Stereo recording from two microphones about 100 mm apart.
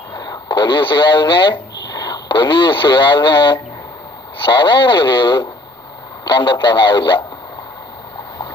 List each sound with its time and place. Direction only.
0.1 s speech: 45° left (ahead or behind)